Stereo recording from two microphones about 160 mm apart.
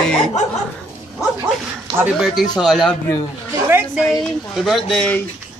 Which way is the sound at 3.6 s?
10° right (ahead or behind).